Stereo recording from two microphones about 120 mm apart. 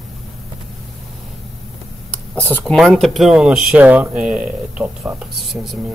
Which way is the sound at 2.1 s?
15° left (ahead or behind).